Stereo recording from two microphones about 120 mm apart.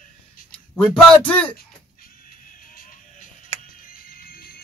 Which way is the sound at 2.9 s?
90° left.